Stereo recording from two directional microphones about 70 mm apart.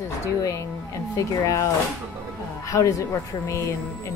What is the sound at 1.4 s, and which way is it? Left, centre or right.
Speech, left.